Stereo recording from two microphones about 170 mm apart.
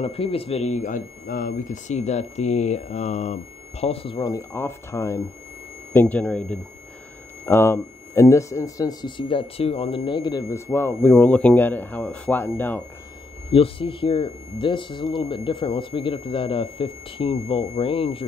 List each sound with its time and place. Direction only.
0.0 s speech: 35° left (ahead or behind)
4.3 s a man's voice: 15° left (ahead or behind)
13.5 s speech: 30° left (ahead or behind)